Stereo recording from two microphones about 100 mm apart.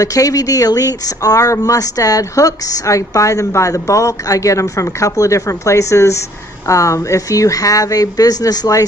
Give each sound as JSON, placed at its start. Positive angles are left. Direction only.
{"t": 0.0, "sound": "speech", "side_deg": 35}